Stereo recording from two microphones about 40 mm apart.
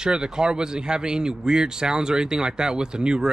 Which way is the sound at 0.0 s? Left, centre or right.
Right.